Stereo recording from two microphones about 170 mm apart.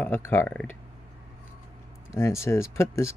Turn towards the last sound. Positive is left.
turn(degrees=15)  # may be behind; listen again after turning